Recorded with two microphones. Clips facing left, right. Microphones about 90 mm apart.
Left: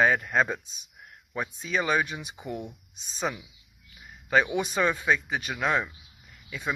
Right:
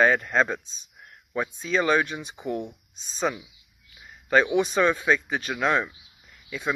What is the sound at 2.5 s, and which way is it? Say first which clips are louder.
Speech: right 5 dB; 10° left (ahead or behind).